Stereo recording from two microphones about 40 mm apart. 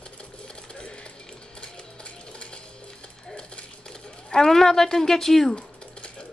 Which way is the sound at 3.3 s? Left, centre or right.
Left.